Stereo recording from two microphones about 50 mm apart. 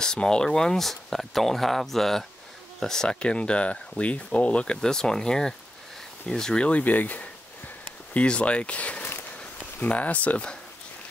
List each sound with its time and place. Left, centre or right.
0.0 s speech: centre
4.8 s speech: centre
6.7 s speech: left
8.1 s speech: left